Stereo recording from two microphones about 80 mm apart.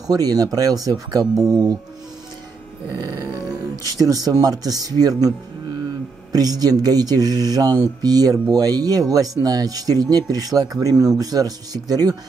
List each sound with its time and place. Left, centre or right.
0.0 s speech: right
1.2 s speech: centre
1.5 s speech: right
2.9 s speech: right
6.3 s speech: right